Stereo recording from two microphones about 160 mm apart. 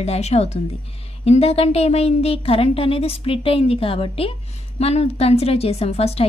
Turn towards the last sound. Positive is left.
turn(degrees=40)  # may be behind; listen again after turning